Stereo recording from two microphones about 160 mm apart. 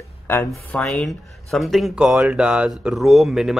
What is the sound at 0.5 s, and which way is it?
Speech, 5° left (ahead or behind).